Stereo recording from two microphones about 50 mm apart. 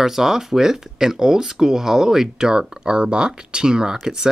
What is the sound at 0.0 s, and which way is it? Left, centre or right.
Speech, centre.